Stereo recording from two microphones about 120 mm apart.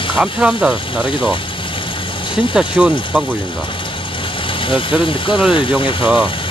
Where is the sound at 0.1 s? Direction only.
5° right (ahead or behind).